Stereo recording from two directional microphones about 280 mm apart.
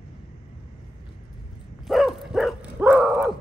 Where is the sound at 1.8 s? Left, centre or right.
Centre.